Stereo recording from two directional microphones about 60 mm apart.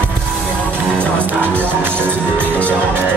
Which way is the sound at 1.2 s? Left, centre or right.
Right.